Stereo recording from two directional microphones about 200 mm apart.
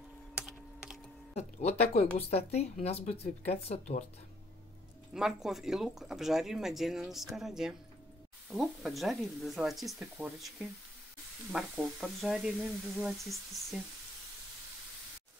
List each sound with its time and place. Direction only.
1.3 s speech: 30° left (ahead or behind)
5.1 s speech: centre (ahead or behind)